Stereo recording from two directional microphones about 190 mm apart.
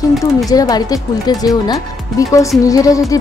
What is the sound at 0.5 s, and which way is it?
Speech, 20° left (ahead or behind).